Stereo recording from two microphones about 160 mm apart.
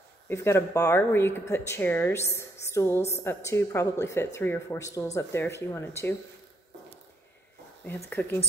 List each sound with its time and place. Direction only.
0.3 s a woman's voice: 15° left (ahead or behind)
7.8 s a woman's voice: 10° left (ahead or behind)